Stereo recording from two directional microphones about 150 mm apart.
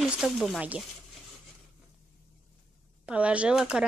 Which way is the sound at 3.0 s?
10° right (ahead or behind).